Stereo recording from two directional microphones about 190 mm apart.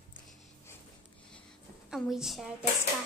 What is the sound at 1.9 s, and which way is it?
Speech, centre (ahead or behind).